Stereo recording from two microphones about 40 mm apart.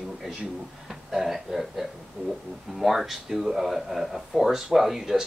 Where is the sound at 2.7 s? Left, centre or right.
Centre.